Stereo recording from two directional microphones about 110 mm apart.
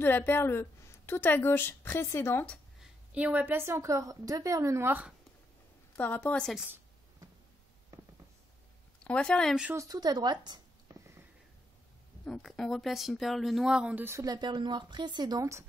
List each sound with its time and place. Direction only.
0.0 s a woman's voice: 20° left (ahead or behind)
2.8 s a woman's voice: 10° right (ahead or behind)
5.9 s speech: 15° left (ahead or behind)
9.0 s speech: 10° left (ahead or behind)
9.8 s a woman's voice: 35° right (ahead or behind)
12.3 s speech: centre (ahead or behind)
14.2 s speech: 40° right (ahead or behind)